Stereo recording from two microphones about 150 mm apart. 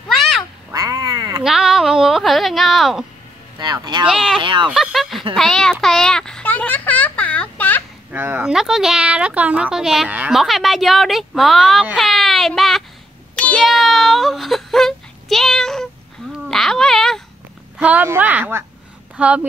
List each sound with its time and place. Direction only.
0.7 s cat: 25° right (ahead or behind)
1.4 s a sound: 5° right (ahead or behind)
3.5 s speech: 30° right (ahead or behind)
4.1 s speech: 5° right (ahead or behind)
4.4 s speech: 35° right (ahead or behind)
4.6 s speech: 5° right (ahead or behind)
5.3 s a sound: 5° left (ahead or behind)
8.1 s speech: 10° right (ahead or behind)
13.4 s whimper: 5° left (ahead or behind)
16.4 s a sound: 5° left (ahead or behind)
17.7 s a woman's voice: 10° right (ahead or behind)